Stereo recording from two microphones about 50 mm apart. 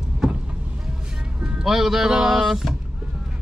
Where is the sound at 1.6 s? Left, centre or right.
Centre.